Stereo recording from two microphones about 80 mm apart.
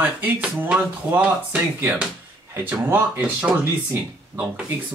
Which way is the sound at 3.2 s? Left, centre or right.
Centre.